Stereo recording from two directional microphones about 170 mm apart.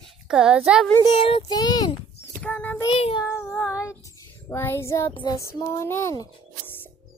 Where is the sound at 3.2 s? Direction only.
15° left (ahead or behind).